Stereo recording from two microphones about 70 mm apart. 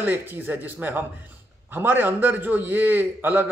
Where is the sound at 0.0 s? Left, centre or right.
Right.